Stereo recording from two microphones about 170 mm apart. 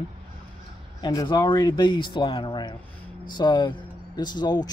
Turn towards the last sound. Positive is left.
turn(degrees=25)  # may be behind; listen again after turning